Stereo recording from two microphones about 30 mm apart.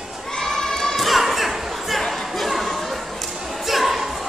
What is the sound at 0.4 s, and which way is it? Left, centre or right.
Crowd, centre.